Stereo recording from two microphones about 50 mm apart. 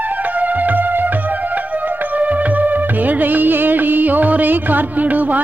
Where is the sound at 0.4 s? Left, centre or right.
Right.